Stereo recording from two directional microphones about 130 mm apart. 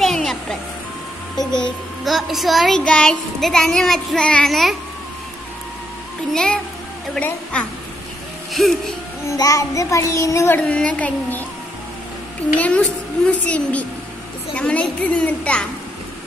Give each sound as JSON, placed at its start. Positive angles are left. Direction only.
{"t": 0.0, "sound": "music", "side_deg": 0}
{"t": 2.0, "sound": "a child's voice", "side_deg": 0}
{"t": 6.3, "sound": "a child's voice", "side_deg": 5}
{"t": 9.3, "sound": "a child's voice", "side_deg": 25}
{"t": 10.7, "sound": "a woman's voice", "side_deg": 10}
{"t": 12.5, "sound": "a woman's voice", "side_deg": 10}